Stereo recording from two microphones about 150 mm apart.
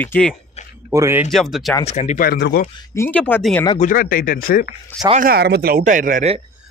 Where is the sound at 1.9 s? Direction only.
50° left (ahead or behind).